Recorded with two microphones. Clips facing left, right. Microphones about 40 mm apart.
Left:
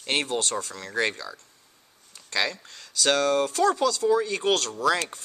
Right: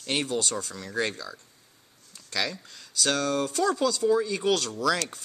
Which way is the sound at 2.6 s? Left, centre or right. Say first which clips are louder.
Left 3 dB; centre.